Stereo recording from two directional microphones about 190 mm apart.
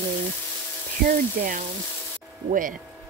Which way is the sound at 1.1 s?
45° right (ahead or behind).